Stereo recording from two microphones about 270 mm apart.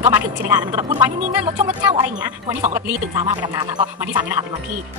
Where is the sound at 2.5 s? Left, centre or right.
Right.